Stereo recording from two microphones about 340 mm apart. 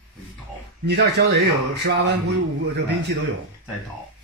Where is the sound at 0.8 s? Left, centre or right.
Right.